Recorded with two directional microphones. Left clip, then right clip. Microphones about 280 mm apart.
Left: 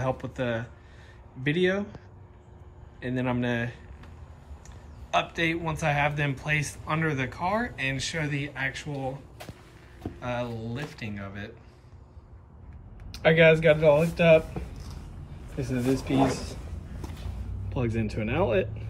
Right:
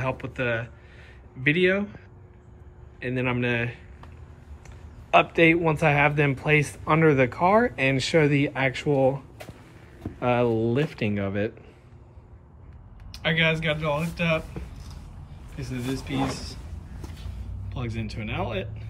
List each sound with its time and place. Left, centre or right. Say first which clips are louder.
0.2 s speech: right 3 dB; centre
3.0 s a man's voice: right 3 dB; centre
5.1 s speech: right 8 dB; centre
13.1 s speech: left 5 dB; centre
15.5 s a sound: left 5 dB; centre
18.2 s speech: left 5 dB; right